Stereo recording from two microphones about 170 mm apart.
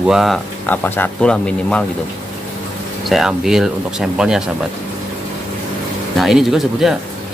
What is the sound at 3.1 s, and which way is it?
Speech, centre (ahead or behind).